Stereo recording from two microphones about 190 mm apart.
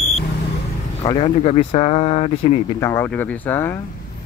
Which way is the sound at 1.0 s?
30° left (ahead or behind).